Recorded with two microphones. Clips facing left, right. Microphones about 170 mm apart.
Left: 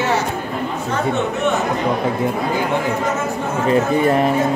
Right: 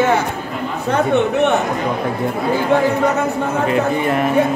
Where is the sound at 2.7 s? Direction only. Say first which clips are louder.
Right 6 dB; 60° right (ahead or behind).